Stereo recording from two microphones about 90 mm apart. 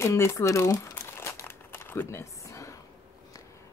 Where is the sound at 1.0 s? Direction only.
30° left (ahead or behind).